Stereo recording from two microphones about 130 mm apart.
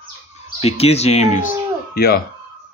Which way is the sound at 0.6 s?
50° left (ahead or behind).